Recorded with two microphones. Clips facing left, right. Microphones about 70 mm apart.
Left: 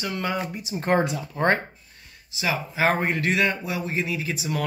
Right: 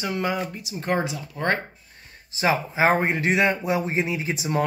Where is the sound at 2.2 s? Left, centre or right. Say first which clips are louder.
Right 5 dB; right.